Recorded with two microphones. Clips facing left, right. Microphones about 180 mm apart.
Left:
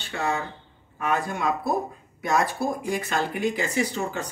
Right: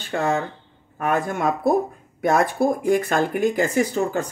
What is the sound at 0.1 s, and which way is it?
Speech, 50° right (ahead or behind).